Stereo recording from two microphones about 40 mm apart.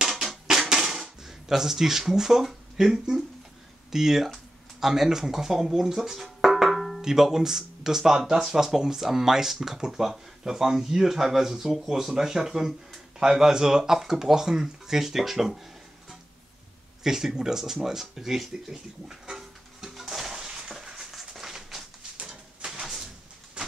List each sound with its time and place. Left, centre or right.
0.1 s drum: centre
0.5 s a sound: centre
3.9 s speech: centre
6.5 s music: centre
7.0 s speech: centre
17.0 s speech: centre
17.8 s a sound: centre
22.2 s bird: right
22.7 s a sound: centre